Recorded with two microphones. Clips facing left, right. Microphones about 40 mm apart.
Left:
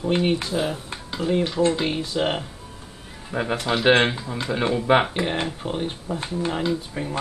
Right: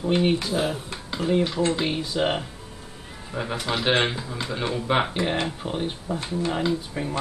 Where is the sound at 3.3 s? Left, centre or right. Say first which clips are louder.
Left 4 dB; centre.